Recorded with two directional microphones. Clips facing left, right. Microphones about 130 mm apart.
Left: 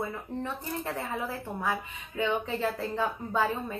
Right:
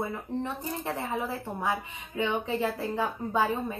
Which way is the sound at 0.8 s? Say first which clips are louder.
Right 3 dB; 15° right (ahead or behind).